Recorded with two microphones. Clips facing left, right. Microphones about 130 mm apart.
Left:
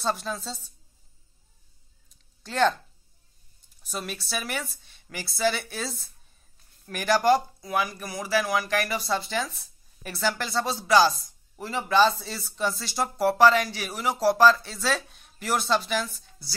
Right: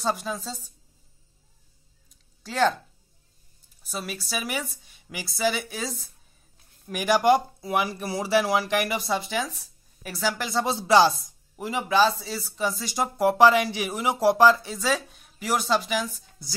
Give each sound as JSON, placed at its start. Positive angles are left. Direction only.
{"t": 0.0, "sound": "a woman's voice", "side_deg": -10}
{"t": 2.4, "sound": "speech", "side_deg": -5}
{"t": 3.8, "sound": "a woman's voice", "side_deg": -5}
{"t": 6.9, "sound": "speech", "side_deg": -10}
{"t": 11.2, "sound": "speech", "side_deg": -15}